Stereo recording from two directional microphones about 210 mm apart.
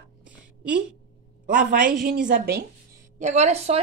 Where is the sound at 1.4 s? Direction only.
40° right (ahead or behind).